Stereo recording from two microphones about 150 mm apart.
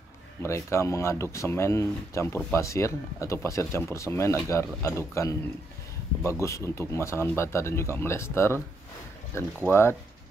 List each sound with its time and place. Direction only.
0.4 s speech: 20° left (ahead or behind)